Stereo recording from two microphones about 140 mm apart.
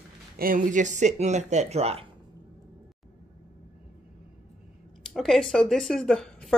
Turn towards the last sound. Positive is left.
turn(degrees=5)  # may be behind; listen again after turning